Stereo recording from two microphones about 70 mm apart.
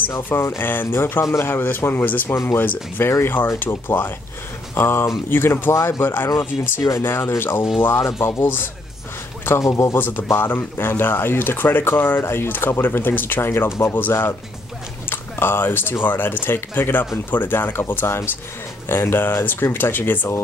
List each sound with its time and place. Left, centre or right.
0.3 s speech: left
6.8 s speech: left
7.1 s speech: left
9.6 s speech: left
9.9 s speech: left